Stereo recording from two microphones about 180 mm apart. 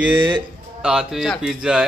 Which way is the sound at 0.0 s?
10° right (ahead or behind).